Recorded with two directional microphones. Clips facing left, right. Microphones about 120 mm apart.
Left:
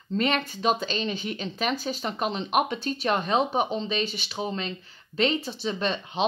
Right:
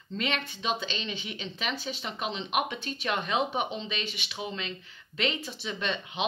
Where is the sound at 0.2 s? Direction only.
40° left (ahead or behind).